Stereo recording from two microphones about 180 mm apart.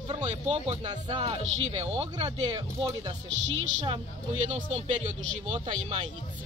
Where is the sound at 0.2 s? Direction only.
40° right (ahead or behind).